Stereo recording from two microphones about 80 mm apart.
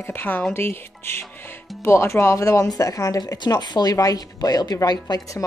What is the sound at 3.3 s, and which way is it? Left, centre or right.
A woman's voice, left.